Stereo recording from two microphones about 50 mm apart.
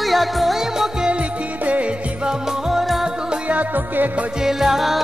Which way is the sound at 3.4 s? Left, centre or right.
Right.